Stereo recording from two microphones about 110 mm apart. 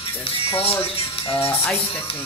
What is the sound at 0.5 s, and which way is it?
Speech, 60° left (ahead or behind).